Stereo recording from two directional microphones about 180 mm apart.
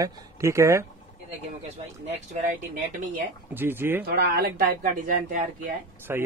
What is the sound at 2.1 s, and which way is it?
Speech, 45° right (ahead or behind).